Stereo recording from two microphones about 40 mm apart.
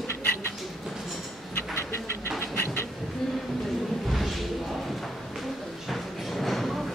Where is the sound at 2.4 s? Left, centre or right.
Left.